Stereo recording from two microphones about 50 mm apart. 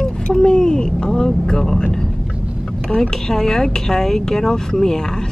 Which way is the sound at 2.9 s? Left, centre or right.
Centre.